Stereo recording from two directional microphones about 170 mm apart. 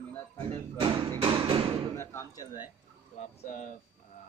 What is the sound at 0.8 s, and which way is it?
Speech, 30° right (ahead or behind).